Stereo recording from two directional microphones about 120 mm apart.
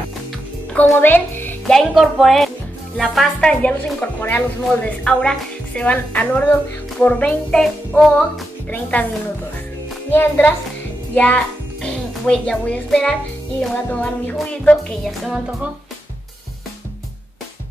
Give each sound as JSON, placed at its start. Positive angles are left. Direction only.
{"t": 0.7, "sound": "speech", "side_deg": 15}
{"t": 1.7, "sound": "speech", "side_deg": 0}
{"t": 10.1, "sound": "speech", "side_deg": 15}
{"t": 15.0, "sound": "speech", "side_deg": 0}